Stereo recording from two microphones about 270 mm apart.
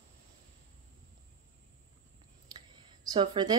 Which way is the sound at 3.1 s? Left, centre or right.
Centre.